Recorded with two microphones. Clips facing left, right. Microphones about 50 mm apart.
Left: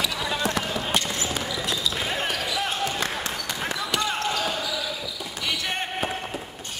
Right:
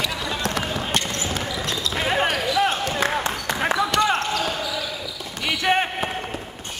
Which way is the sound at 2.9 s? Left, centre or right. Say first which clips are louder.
Right 5 dB; right.